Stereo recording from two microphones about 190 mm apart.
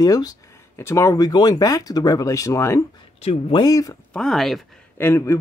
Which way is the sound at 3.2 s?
30° left (ahead or behind).